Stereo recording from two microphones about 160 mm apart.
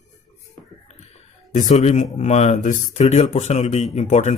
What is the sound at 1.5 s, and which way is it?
Speech, 50° left (ahead or behind).